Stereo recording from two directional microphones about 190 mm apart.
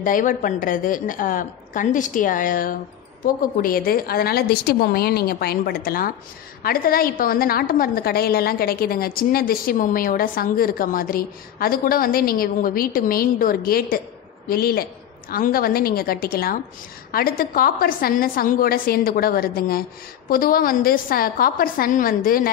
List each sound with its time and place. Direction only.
0.0 s a woman's voice: 45° left (ahead or behind)